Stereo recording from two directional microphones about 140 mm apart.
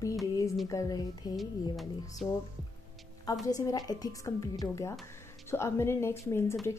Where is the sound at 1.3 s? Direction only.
Centre (ahead or behind).